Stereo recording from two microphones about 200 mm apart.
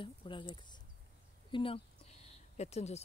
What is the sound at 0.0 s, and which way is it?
A woman's voice, 25° left (ahead or behind).